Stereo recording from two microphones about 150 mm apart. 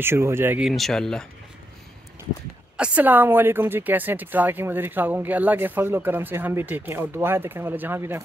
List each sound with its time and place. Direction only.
0.0 s speech: 15° right (ahead or behind)
0.7 s speech: centre (ahead or behind)
2.8 s speech: 10° right (ahead or behind)